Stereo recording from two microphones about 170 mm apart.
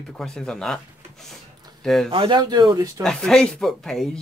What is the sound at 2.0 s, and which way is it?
Speech, 30° right (ahead or behind).